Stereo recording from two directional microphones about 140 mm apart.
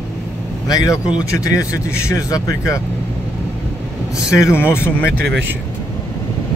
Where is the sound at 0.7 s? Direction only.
25° left (ahead or behind).